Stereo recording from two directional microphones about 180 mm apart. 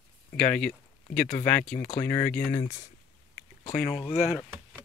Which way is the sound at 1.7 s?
45° left (ahead or behind).